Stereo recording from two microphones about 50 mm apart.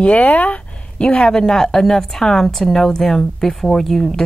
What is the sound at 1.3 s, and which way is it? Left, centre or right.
A woman's voice, centre.